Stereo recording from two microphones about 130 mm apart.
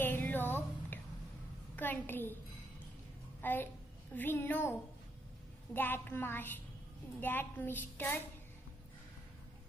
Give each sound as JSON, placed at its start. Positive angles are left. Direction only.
{"t": 0.0, "sound": "music", "side_deg": 15}
{"t": 1.8, "sound": "a child's voice", "side_deg": 15}
{"t": 3.3, "sound": "a sound", "side_deg": 15}
{"t": 4.1, "sound": "a child's voice", "side_deg": 15}